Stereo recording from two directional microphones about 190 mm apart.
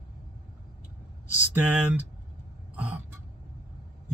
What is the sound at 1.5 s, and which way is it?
Speech, 10° right (ahead or behind).